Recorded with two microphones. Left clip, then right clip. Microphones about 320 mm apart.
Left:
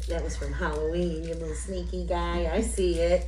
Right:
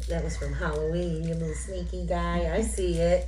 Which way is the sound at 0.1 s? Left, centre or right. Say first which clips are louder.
Even; left.